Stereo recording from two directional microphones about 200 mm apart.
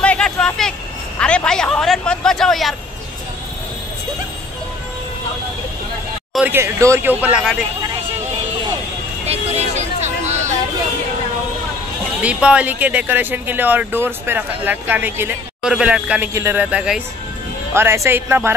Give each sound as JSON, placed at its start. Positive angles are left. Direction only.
{"t": 0.0, "sound": "a sound", "side_deg": 5}
{"t": 1.2, "sound": "speech", "side_deg": 5}
{"t": 6.3, "sound": "speech", "side_deg": -10}
{"t": 9.3, "sound": "vehicle", "side_deg": -35}
{"t": 12.2, "sound": "speech", "side_deg": -5}